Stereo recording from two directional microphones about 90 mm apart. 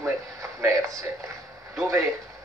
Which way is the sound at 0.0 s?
35° right (ahead or behind).